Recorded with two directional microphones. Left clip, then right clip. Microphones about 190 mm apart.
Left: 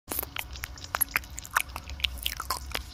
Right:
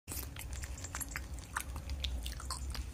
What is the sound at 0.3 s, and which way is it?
Biting, 40° left (ahead or behind).